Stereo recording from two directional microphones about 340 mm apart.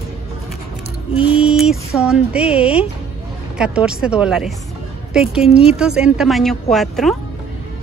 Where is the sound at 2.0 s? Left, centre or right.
Centre.